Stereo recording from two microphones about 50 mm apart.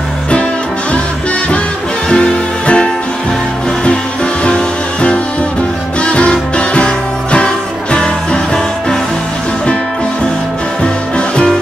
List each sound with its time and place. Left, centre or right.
2.0 s music: centre
10.8 s music: centre